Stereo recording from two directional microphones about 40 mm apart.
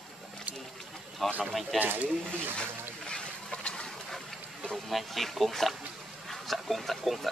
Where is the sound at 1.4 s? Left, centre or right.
Centre.